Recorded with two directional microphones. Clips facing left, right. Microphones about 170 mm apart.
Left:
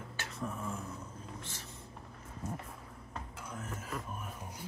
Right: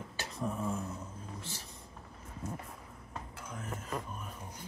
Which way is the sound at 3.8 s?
5° left (ahead or behind).